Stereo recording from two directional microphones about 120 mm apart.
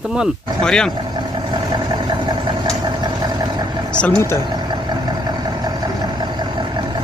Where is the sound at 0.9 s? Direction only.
40° right (ahead or behind).